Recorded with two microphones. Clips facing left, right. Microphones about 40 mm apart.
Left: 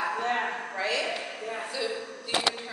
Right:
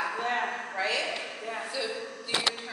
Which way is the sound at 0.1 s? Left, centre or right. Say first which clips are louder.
Left 2 dB; centre.